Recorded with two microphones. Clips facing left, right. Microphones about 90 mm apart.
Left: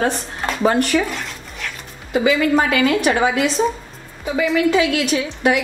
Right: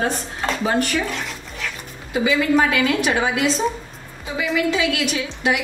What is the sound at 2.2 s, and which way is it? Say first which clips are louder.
A woman's voice: left 1 dB; 45° left (ahead or behind).